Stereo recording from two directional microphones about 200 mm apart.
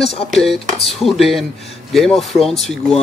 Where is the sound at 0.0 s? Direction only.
30° left (ahead or behind).